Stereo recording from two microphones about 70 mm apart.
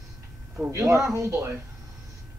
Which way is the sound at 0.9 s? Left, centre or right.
Right.